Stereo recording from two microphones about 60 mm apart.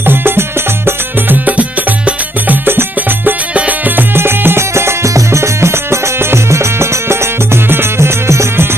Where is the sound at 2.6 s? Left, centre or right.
Right.